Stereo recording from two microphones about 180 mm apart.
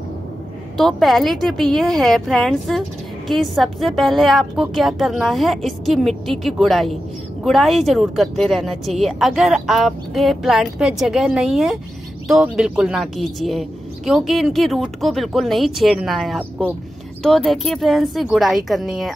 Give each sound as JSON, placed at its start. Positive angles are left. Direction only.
{"t": 0.7, "sound": "speech", "side_deg": 0}